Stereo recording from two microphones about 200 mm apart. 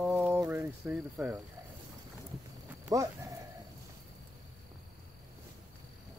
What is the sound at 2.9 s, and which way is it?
Speech, 15° right (ahead or behind).